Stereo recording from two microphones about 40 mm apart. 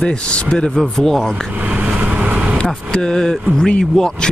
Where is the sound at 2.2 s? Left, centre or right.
Right.